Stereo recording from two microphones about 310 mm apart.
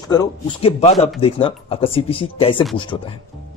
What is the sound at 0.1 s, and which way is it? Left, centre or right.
Speech, centre.